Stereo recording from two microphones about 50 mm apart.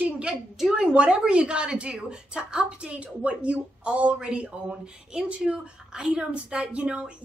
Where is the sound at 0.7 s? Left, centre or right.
Right.